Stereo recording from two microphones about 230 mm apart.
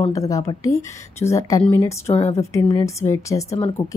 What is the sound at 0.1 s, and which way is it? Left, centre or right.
A woman's voice, centre.